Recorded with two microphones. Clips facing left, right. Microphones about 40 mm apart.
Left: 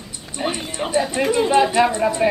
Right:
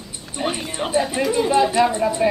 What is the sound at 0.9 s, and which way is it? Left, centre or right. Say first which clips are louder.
Speech: even; centre.